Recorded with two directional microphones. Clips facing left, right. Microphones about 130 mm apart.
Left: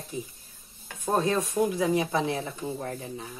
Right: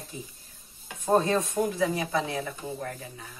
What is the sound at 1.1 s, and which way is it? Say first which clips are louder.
Speech: even; centre (ahead or behind).